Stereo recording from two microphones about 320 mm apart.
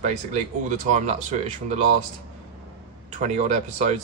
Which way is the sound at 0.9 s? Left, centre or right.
Right.